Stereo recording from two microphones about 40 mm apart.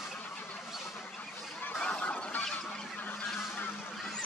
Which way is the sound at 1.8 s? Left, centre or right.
Left.